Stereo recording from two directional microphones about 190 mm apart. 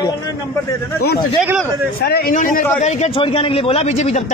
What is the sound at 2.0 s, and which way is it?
Speech, 55° left (ahead or behind).